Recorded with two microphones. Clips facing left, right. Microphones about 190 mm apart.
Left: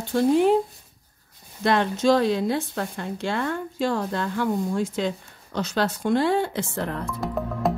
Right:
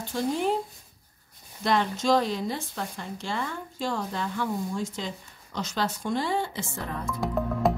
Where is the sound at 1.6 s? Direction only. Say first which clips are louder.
Left 4 dB; 60° left (ahead or behind).